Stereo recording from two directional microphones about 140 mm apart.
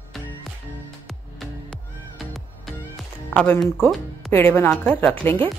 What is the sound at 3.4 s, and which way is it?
A woman's voice, 10° left (ahead or behind).